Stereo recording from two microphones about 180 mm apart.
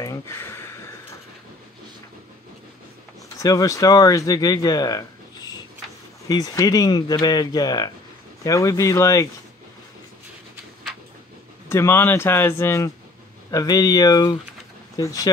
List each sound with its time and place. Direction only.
0.0 s a sound: 15° left (ahead or behind)
3.3 s speech: 20° left (ahead or behind)
11.7 s speech: 15° left (ahead or behind)